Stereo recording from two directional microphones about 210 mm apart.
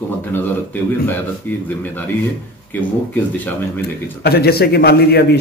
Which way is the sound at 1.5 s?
10° left (ahead or behind).